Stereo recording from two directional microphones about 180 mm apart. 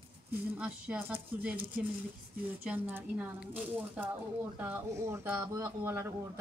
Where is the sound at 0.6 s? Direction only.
10° right (ahead or behind).